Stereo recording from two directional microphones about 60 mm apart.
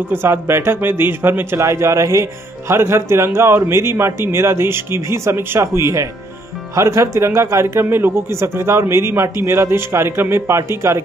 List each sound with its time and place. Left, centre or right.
0.1 s a man's voice: right
1.6 s a man's voice: right